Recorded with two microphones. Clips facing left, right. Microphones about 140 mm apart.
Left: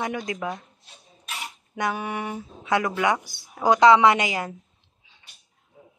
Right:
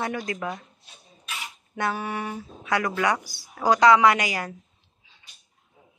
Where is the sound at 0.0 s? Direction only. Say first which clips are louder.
Left 1 dB; 20° left (ahead or behind).